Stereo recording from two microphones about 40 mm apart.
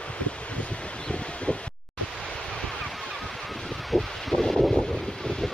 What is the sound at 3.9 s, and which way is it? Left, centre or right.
Wind noise, centre.